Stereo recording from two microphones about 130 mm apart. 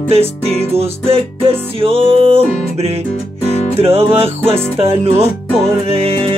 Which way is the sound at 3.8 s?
50° right (ahead or behind).